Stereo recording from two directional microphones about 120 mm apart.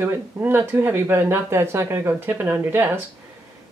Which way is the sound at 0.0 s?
20° right (ahead or behind).